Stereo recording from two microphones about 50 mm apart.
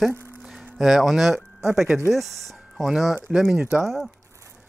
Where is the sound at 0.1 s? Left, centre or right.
Right.